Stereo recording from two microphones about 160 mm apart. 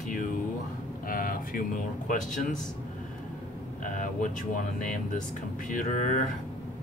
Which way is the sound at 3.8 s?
55° left (ahead or behind).